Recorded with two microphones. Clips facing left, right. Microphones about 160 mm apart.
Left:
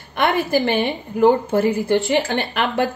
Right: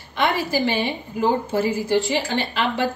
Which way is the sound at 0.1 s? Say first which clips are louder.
Left 3 dB; 55° left (ahead or behind).